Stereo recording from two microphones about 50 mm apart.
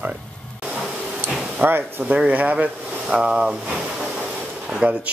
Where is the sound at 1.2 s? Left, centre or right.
Right.